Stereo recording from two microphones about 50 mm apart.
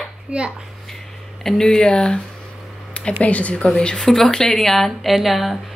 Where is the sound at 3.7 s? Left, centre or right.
Centre.